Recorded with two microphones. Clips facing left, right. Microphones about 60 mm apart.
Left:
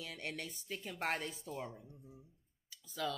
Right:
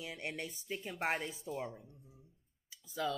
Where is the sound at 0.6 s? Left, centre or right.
Centre.